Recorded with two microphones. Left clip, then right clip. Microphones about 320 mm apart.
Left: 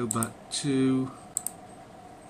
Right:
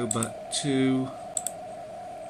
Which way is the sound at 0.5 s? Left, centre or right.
Left.